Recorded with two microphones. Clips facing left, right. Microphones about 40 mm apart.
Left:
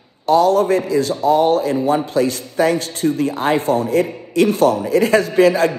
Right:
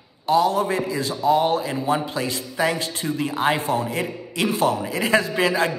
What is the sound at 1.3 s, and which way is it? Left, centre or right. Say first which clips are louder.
A man's voice: left 6 dB; right.